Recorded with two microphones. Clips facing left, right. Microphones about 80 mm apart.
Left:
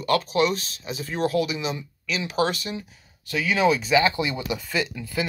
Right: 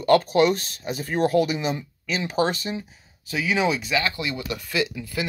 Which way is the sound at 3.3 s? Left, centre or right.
Centre.